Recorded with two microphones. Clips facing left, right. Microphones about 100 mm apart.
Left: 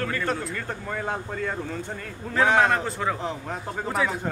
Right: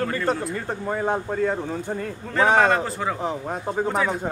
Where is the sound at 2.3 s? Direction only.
5° right (ahead or behind).